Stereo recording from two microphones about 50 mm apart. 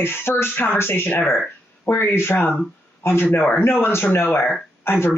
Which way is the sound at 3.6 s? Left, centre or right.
Left.